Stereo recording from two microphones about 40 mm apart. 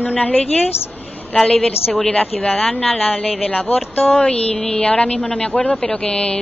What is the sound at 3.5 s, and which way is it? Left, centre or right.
A woman's voice, left.